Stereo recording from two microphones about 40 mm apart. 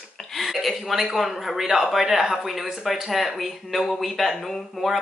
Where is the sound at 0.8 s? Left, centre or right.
Centre.